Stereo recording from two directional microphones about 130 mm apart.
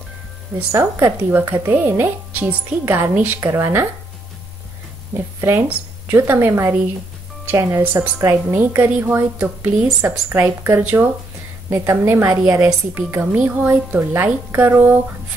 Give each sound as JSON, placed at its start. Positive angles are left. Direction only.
{"t": 0.7, "sound": "a woman's voice", "side_deg": -20}
{"t": 5.1, "sound": "a woman's voice", "side_deg": -20}